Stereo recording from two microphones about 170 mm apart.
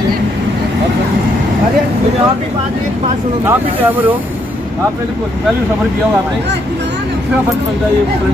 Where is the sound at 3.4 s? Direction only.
10° right (ahead or behind).